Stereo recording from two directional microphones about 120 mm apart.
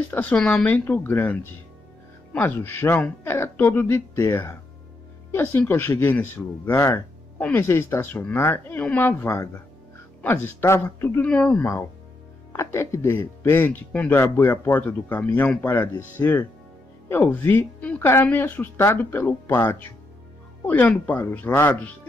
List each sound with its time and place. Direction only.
0.1 s speech: 15° left (ahead or behind)
12.5 s speech: 25° left (ahead or behind)